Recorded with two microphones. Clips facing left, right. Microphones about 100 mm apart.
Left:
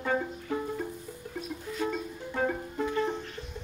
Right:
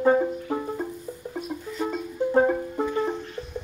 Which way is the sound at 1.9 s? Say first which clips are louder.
Right 12 dB; 30° right (ahead or behind).